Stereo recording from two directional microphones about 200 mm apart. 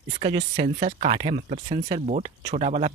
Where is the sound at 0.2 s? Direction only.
25° right (ahead or behind).